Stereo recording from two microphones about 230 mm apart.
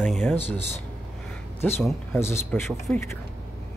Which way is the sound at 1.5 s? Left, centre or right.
Centre.